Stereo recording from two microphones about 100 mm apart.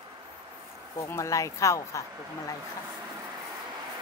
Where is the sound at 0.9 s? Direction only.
30° left (ahead or behind).